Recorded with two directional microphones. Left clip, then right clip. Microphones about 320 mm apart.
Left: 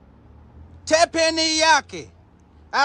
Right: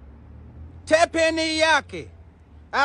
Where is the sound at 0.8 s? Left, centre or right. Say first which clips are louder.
Left 1 dB; centre.